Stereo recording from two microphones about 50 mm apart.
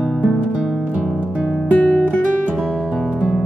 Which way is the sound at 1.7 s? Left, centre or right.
Left.